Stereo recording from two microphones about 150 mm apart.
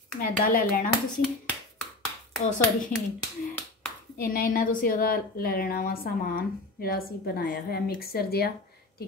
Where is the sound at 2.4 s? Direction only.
50° left (ahead or behind).